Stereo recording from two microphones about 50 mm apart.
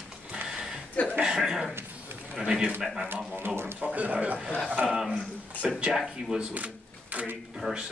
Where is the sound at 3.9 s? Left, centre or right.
Right.